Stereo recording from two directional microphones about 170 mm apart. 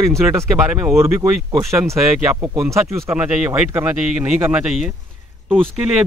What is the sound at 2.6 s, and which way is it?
A man's voice, 15° right (ahead or behind).